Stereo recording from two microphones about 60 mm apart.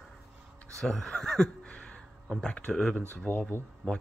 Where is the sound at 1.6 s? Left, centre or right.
Centre.